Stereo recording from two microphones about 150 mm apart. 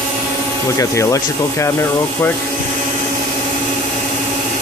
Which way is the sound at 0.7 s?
20° left (ahead or behind).